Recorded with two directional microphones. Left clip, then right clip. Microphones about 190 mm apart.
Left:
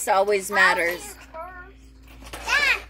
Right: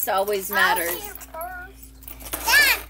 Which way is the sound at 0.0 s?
35° left (ahead or behind).